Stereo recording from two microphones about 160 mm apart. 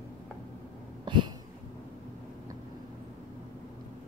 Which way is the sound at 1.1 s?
30° right (ahead or behind).